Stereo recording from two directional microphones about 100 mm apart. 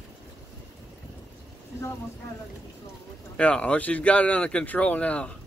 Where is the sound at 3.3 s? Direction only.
10° left (ahead or behind).